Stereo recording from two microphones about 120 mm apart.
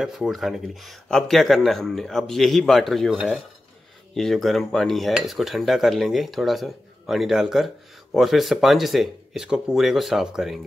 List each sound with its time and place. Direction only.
0.0 s cutlery: centre (ahead or behind)